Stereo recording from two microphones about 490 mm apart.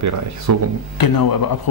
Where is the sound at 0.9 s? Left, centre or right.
Left.